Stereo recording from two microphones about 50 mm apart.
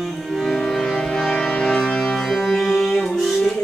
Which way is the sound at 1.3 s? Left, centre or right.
Centre.